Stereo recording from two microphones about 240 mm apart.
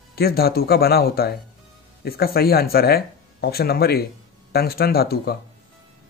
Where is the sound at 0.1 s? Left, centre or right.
Left.